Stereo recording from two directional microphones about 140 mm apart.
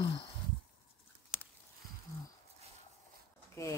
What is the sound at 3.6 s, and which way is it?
Speech, 20° left (ahead or behind).